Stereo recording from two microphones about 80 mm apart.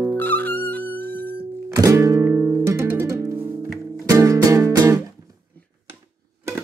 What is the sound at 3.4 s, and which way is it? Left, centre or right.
Music, right.